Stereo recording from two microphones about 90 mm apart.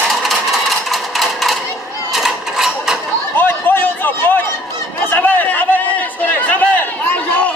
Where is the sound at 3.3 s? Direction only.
25° left (ahead or behind).